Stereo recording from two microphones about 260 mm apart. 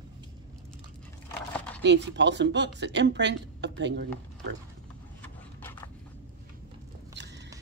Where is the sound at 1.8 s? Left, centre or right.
Right.